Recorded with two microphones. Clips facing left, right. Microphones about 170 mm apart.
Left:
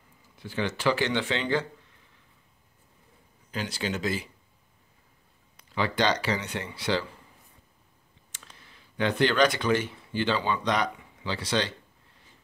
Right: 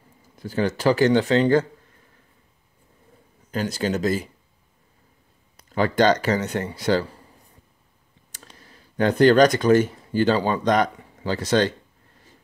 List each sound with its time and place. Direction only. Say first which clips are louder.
0.4 s a man's voice: right 7 dB; 40° right (ahead or behind)
3.5 s speech: right 7 dB; 45° right (ahead or behind)
5.6 s speech: right 7 dB; 45° right (ahead or behind)
8.3 s speech: right 5 dB; 40° right (ahead or behind)